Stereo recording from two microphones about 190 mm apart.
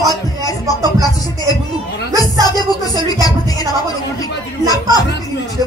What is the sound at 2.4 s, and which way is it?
Music, 20° left (ahead or behind).